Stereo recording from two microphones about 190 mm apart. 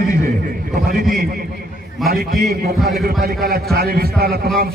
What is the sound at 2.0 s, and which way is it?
A man's voice, 55° right (ahead or behind).